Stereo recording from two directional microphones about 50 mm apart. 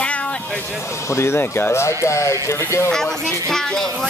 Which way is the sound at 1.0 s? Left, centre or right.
Left.